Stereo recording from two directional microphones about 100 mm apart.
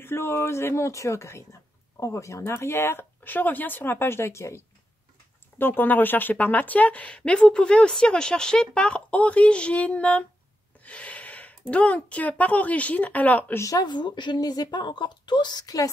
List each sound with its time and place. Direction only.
0.0 s speech: 25° left (ahead or behind)
5.6 s a woman's voice: 20° left (ahead or behind)
10.8 s gasp: 15° left (ahead or behind)
11.7 s a woman's voice: 15° left (ahead or behind)
13.6 s a woman's voice: 35° left (ahead or behind)